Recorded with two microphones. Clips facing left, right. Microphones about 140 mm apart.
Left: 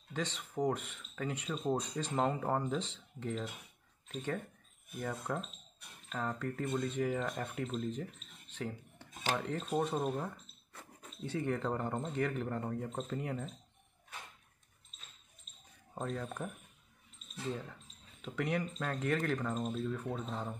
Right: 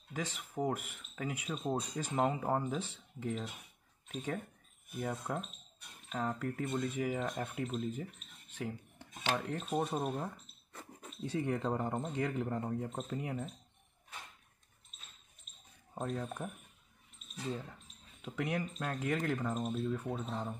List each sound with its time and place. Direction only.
0.1 s speech: 10° right (ahead or behind)
15.9 s speech: 5° right (ahead or behind)